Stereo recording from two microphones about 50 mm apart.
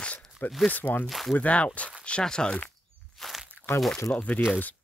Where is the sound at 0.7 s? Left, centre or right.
Left.